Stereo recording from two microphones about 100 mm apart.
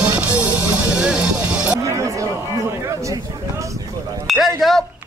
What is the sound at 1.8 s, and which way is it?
Music, 30° right (ahead or behind).